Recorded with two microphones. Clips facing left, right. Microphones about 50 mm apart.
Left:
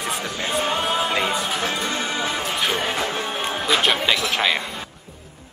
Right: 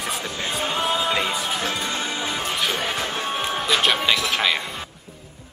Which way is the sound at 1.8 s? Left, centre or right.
Left.